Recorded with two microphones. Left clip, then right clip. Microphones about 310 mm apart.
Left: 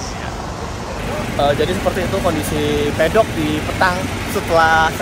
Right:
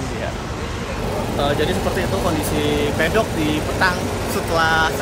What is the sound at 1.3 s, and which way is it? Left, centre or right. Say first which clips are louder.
Speech: left 4 dB; centre.